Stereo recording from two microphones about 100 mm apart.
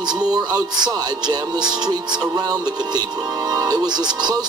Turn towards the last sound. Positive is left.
turn(degrees=-45)  # may be behind; listen again after turning